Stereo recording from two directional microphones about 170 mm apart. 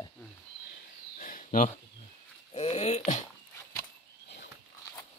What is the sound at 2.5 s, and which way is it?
Speech, 35° left (ahead or behind).